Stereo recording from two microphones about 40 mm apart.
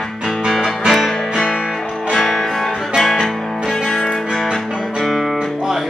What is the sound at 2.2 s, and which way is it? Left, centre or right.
Music, centre.